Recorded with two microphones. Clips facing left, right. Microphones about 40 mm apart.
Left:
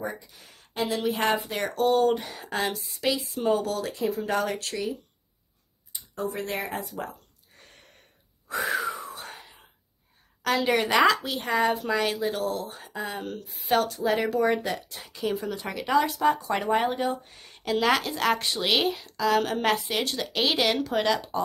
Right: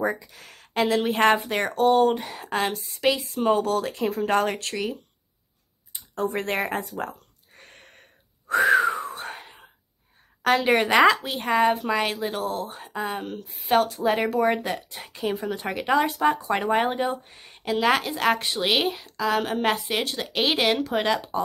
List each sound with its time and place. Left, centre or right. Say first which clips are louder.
0.0 s a sound: right 8 dB; right
1.0 s speech: right 5 dB; right
1.8 s speech: right 3 dB; right
3.9 s speech: right 4 dB; right
5.9 s a sound: right 4 dB; right
10.6 s speech: right 2 dB; right